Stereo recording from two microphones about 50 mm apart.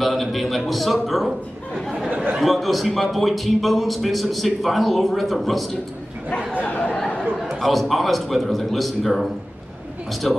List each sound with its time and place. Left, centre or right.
0.0 s a man's voice: centre
2.3 s a man's voice: centre
6.8 s a sound: left
7.4 s a man's voice: centre